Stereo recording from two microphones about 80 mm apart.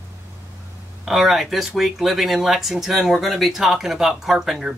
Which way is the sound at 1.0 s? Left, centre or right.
Centre.